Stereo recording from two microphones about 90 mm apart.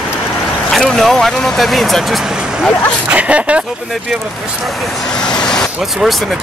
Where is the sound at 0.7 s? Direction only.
5° left (ahead or behind).